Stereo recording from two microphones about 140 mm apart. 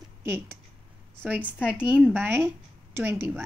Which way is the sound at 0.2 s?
15° right (ahead or behind).